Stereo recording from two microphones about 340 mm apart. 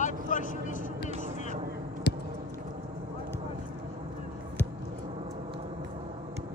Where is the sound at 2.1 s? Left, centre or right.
Left.